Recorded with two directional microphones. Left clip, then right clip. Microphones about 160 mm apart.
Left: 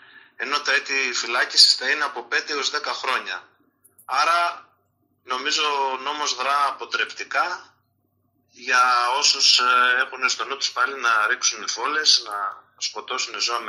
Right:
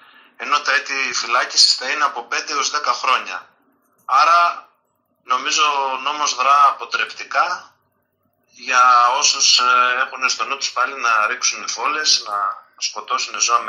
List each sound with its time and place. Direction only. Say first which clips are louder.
0.4 s speech: right 4 dB; 25° left (ahead or behind)